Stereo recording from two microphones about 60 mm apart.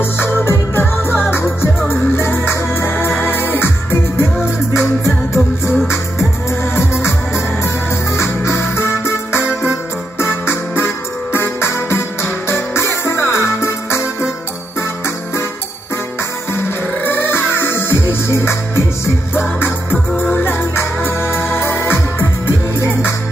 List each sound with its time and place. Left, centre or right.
0.0 s music: left
6.6 s music: left
17.0 s music: left
20.4 s music: left